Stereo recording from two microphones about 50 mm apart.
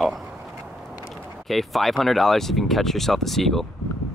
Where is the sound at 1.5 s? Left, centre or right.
Centre.